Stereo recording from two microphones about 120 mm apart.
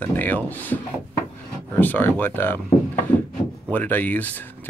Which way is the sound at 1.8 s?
15° left (ahead or behind).